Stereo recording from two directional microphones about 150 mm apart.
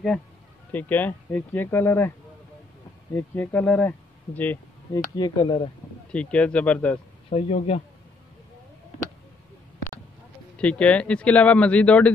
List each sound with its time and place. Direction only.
0.7 s speech: 10° left (ahead or behind)
3.2 s speech: 10° left (ahead or behind)
5.1 s speech: 30° left (ahead or behind)
6.1 s speech: 10° left (ahead or behind)
7.2 s speech: 40° left (ahead or behind)
10.6 s speech: 10° left (ahead or behind)